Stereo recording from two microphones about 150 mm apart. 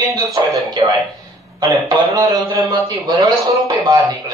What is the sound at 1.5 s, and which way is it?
A man's voice, 25° right (ahead or behind).